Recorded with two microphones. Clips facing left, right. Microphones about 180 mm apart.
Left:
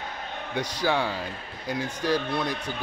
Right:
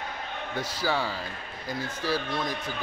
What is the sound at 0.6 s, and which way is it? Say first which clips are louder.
Speech: left 3 dB; 15° left (ahead or behind).